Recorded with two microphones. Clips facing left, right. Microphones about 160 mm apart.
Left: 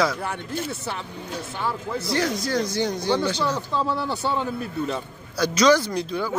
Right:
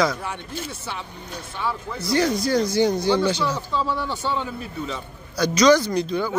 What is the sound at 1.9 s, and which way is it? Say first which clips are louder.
Speech: right 5 dB; centre (ahead or behind).